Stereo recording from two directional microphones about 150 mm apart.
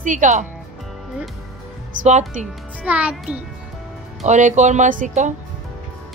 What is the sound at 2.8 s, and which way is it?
Speech, 10° right (ahead or behind).